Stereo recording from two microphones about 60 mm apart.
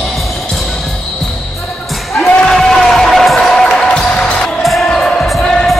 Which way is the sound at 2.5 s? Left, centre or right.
Centre.